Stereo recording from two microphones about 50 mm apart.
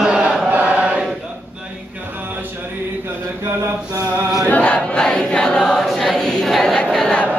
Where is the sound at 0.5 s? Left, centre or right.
Right.